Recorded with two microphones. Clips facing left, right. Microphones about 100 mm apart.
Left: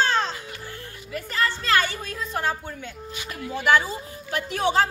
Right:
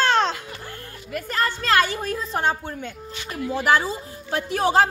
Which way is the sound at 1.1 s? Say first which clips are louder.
Right 2 dB; 55° right (ahead or behind).